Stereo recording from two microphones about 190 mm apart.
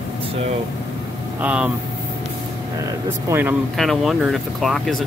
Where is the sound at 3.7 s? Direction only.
Centre (ahead or behind).